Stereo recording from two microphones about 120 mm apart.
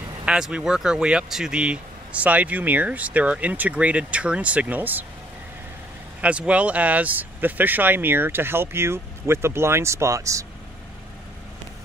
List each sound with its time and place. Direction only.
0.2 s speech: 10° right (ahead or behind)
6.2 s speech: 10° right (ahead or behind); by 10.4 s 25° right (ahead or behind)